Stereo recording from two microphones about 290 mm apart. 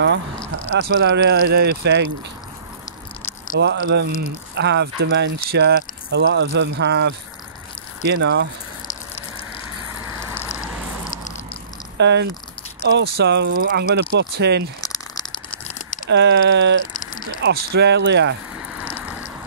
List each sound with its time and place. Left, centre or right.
0.7 s speech: right
3.5 s speech: right
10.0 s a sound: centre
12.0 s speech: right
14.8 s crumpling: centre
16.1 s speech: right
16.9 s a sound: left
17.4 s speech: right